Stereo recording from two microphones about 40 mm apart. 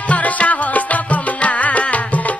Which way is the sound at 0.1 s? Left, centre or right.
Left.